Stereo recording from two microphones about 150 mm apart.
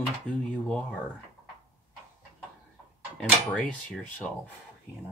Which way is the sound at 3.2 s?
10° left (ahead or behind).